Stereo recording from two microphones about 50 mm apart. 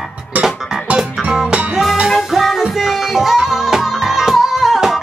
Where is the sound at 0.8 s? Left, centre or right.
Right.